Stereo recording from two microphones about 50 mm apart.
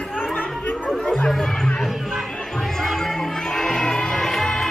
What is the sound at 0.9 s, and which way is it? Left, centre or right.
Chatter, centre.